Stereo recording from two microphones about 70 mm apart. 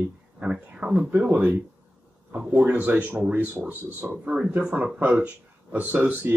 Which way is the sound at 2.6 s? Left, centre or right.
Right.